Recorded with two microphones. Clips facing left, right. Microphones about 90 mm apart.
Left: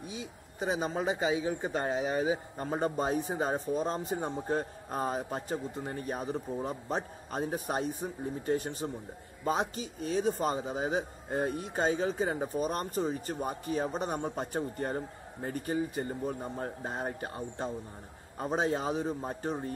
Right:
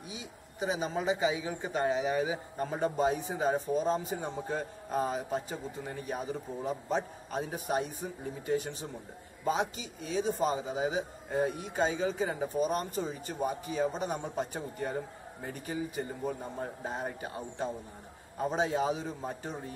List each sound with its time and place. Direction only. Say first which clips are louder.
0.0 s a man's voice: left 3 dB; 40° left (ahead or behind)
2.8 s a man's voice: right 1 dB; 45° left (ahead or behind)